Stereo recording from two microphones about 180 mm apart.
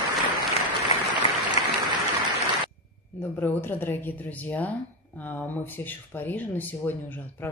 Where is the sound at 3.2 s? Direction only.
10° left (ahead or behind).